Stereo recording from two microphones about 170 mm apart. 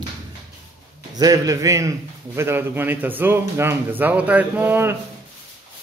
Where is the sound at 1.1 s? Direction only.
20° right (ahead or behind).